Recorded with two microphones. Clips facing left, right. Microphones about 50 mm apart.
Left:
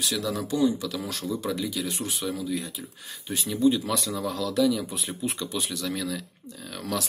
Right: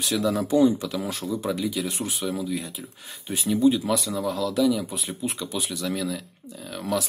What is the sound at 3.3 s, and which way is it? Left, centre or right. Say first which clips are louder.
Speech: right 3 dB; right.